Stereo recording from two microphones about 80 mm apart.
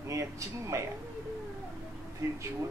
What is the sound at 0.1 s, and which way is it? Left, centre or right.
Speech, right.